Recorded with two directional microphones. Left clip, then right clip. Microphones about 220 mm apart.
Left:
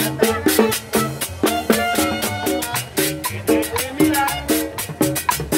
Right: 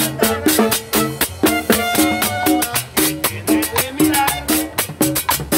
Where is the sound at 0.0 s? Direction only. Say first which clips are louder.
Right 1 dB; 45° right (ahead or behind).